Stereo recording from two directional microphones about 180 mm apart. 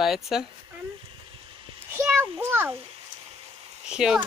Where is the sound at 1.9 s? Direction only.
15° right (ahead or behind).